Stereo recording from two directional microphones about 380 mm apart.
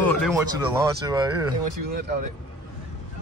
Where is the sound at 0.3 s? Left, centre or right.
Centre.